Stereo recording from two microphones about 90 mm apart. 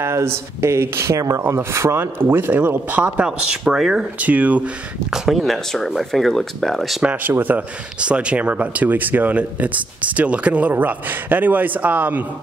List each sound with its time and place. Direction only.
0.0 s speech: 30° right (ahead or behind); by 4.0 s 5° right (ahead or behind)
4.2 s speech: 15° right (ahead or behind)
5.1 s speech: 5° right (ahead or behind)
7.0 s speech: 15° right (ahead or behind)